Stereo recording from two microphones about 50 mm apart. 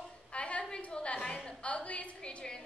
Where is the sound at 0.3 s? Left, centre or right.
Left.